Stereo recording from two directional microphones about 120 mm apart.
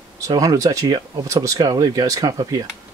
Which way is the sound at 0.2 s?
30° right (ahead or behind).